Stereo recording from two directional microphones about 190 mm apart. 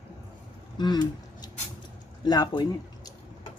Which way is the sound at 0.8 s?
20° left (ahead or behind).